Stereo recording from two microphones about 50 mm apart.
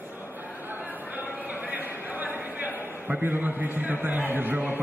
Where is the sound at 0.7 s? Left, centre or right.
Right.